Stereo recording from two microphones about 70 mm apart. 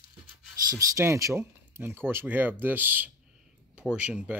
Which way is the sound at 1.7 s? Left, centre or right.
Right.